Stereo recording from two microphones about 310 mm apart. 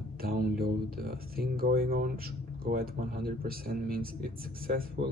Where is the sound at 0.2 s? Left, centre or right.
Right.